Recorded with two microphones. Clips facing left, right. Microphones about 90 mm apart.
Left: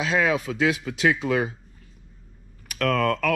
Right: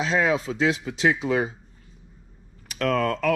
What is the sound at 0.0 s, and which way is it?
Speech, 30° right (ahead or behind).